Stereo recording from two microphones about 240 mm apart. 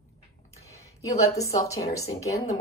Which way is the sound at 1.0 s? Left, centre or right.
Centre.